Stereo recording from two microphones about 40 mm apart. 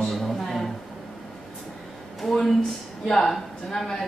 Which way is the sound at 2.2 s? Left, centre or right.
Centre.